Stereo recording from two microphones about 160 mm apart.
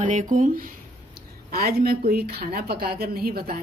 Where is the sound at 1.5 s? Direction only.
70° right (ahead or behind).